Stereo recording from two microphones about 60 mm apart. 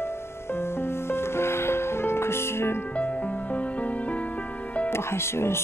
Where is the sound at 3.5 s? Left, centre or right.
Left.